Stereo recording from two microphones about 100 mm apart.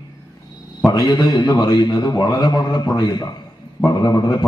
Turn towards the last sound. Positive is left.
turn(degrees=45)  # may be behind; listen again after turning